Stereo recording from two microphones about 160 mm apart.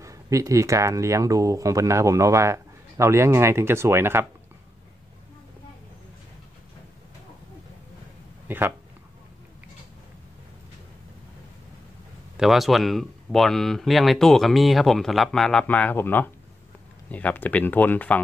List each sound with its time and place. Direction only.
0.0 s speech: 20° right (ahead or behind)
8.5 s speech: 10° right (ahead or behind)
12.4 s speech: centre (ahead or behind)